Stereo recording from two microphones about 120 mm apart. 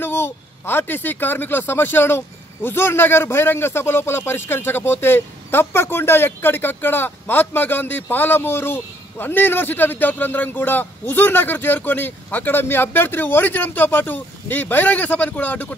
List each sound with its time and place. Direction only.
0.0 s speech: 20° left (ahead or behind)